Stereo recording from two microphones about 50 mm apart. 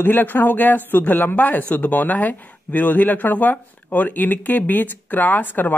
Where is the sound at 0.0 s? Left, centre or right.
Left.